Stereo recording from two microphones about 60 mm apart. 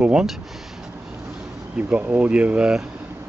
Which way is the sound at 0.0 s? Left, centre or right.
Centre.